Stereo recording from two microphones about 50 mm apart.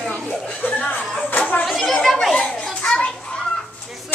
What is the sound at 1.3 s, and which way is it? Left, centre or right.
Speech, left.